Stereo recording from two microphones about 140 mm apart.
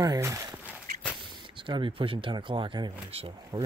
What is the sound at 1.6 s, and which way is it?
Speech, 35° right (ahead or behind).